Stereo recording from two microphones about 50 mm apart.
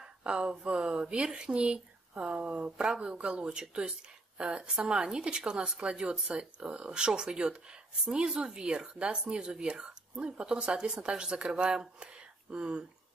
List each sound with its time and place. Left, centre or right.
0.0 s speech: centre